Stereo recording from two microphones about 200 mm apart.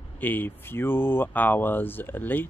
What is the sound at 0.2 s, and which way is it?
Speech, 10° left (ahead or behind).